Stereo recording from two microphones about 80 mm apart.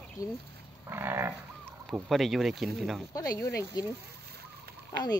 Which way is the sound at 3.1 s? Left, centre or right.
Left.